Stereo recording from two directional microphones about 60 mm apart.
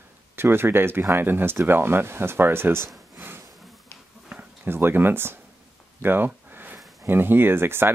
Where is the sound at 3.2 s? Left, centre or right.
Right.